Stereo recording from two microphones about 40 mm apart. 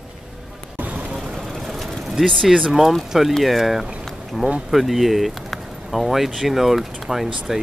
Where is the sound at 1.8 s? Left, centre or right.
Centre.